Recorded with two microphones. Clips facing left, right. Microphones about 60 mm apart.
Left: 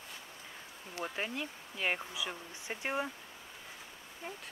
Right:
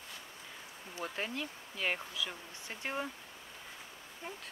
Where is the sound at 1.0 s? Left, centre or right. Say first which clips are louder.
Even; centre.